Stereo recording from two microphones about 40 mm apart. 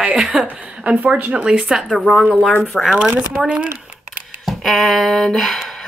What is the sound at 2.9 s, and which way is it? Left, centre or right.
Speech, right.